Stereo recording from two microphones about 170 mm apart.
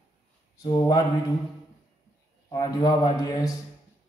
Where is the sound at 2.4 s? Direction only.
25° left (ahead or behind).